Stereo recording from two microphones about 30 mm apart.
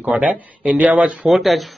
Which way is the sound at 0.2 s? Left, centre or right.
Right.